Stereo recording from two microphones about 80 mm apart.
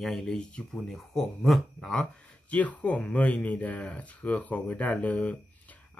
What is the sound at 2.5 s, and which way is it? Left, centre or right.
Speech, centre.